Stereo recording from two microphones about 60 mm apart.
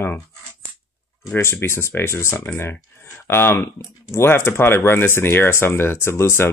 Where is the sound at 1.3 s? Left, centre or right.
Left.